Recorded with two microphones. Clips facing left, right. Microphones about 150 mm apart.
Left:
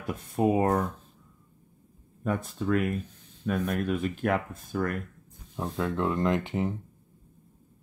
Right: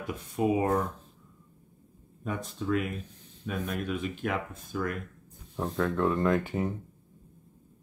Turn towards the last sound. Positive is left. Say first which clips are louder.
# even
turn(degrees=15)  # may be behind; listen again after turning